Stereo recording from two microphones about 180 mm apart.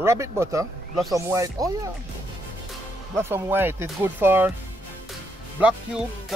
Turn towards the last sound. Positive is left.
turn(degrees=-5)  # may be behind; listen again after turning